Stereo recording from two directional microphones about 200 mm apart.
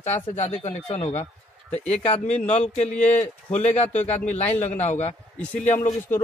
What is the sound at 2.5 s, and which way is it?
A man's voice, 35° left (ahead or behind).